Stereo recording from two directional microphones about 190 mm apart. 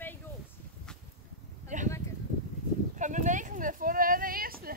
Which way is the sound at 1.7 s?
40° right (ahead or behind).